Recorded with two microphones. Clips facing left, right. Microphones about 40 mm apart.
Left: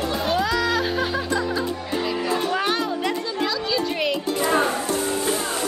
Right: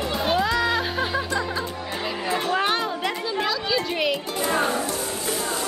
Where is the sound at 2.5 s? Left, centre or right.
Centre.